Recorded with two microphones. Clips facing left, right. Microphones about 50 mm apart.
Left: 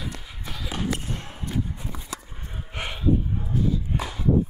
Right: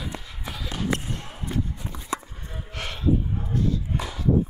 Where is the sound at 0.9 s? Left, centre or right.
Centre.